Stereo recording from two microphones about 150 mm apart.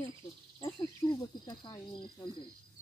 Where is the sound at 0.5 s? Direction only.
30° left (ahead or behind).